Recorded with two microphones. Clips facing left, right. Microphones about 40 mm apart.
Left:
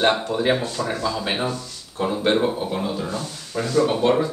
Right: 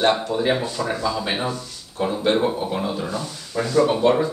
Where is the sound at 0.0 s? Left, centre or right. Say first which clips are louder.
Even; centre.